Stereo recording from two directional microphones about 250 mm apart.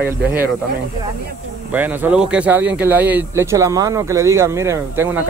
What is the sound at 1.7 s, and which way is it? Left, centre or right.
Speech, centre.